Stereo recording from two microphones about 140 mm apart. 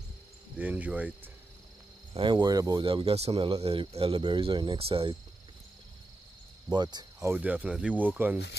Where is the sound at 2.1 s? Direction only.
35° right (ahead or behind).